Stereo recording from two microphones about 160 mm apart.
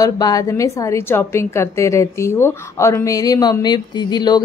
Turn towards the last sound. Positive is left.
turn(degrees=25)  # may be behind; listen again after turning